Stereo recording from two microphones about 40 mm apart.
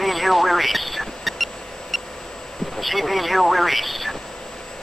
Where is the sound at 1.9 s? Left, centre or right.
Centre.